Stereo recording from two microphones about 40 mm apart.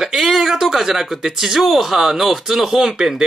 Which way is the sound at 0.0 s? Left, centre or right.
Centre.